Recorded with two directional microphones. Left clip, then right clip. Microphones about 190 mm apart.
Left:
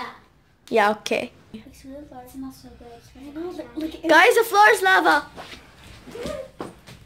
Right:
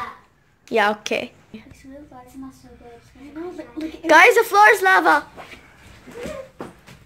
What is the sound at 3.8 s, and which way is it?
Speech, 10° right (ahead or behind).